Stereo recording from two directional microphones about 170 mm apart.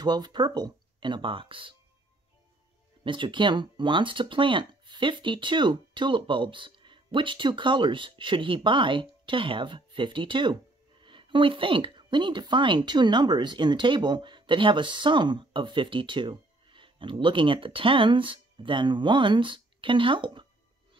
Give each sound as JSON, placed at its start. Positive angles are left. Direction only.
{"t": 0.0, "sound": "speech", "side_deg": -25}
{"t": 3.0, "sound": "speech", "side_deg": -30}